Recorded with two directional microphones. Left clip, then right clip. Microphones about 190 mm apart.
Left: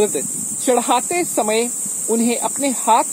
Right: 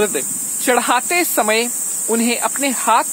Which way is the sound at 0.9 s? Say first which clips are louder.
Right 2 dB; 5° right (ahead or behind).